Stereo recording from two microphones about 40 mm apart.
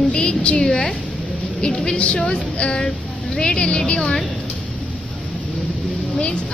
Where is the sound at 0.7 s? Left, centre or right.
Centre.